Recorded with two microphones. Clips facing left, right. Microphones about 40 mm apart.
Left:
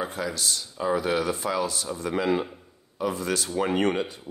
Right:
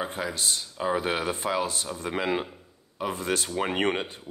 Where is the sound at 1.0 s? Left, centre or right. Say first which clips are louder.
Left 2 dB; right.